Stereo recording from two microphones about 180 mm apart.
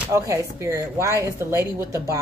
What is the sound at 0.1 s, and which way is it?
A woman's voice, 15° right (ahead or behind).